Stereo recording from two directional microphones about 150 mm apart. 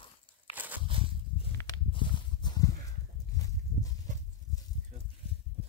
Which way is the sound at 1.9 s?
35° left (ahead or behind).